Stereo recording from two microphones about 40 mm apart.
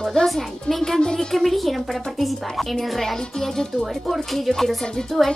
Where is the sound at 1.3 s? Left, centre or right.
Centre.